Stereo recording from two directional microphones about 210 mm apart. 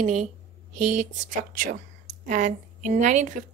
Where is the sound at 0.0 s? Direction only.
35° right (ahead or behind).